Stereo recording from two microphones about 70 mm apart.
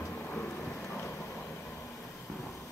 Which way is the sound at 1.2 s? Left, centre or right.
Left.